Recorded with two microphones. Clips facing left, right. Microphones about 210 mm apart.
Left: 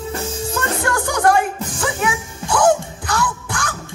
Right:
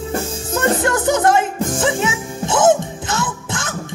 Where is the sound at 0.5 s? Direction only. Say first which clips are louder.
Right 6 dB; 20° right (ahead or behind).